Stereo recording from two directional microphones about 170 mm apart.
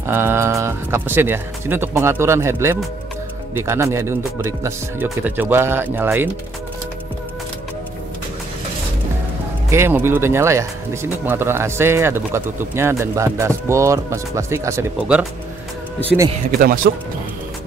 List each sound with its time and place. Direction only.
0.0 s speech: 15° right (ahead or behind)
9.7 s speech: 15° right (ahead or behind)
16.5 s speech: 60° right (ahead or behind)